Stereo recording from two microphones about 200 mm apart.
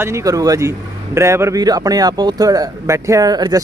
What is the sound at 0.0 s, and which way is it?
A man's voice, 15° right (ahead or behind).